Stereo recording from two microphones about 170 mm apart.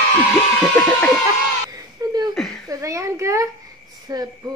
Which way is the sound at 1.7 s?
25° right (ahead or behind).